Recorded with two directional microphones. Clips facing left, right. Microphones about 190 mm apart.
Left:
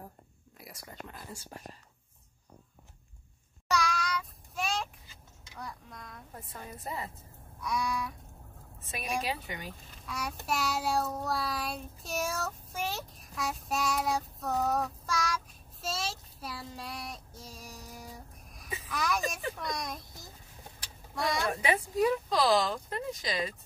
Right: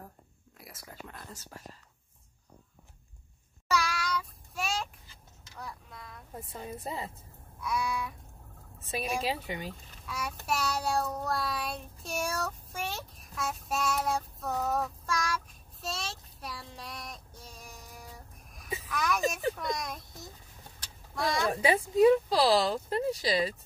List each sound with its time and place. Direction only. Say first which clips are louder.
0.6 s speech: left 1 dB; centre (ahead or behind)
3.6 s child singing: even; 5° right (ahead or behind)
5.6 s speech: even; 5° right (ahead or behind)
6.3 s a woman's voice: right 6 dB; 25° right (ahead or behind)
7.6 s speech: even; 5° right (ahead or behind)
9.2 s a woman's voice: right 3 dB; 30° right (ahead or behind)
10.0 s a child's voice: even; centre (ahead or behind)
10.4 s child singing: even; centre (ahead or behind)
18.9 s speech: right 2 dB; centre (ahead or behind)
20.8 s vehicle: right 1 dB; centre (ahead or behind)
21.5 s speech: right 3 dB; 35° right (ahead or behind)